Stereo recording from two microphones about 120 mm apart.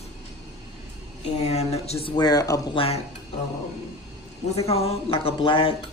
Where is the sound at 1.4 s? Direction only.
60° left (ahead or behind).